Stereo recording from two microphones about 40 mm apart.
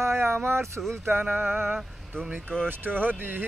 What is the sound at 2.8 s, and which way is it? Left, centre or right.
Speech, right.